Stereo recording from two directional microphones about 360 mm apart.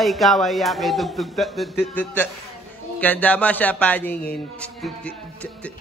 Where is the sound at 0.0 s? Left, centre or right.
Centre.